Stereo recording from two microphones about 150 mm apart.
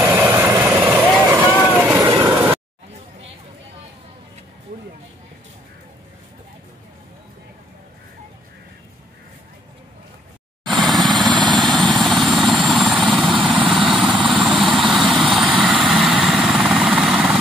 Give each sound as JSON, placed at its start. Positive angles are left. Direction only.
{"t": 0.0, "sound": "vehicle", "side_deg": -15}
{"t": 10.6, "sound": "vehicle", "side_deg": 0}